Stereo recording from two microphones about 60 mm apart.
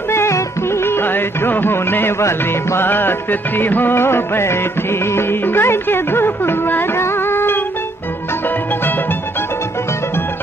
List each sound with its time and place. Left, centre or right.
0.1 s music: left